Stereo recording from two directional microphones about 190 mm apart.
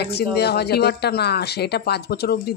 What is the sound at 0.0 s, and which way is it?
Speech, 60° left (ahead or behind).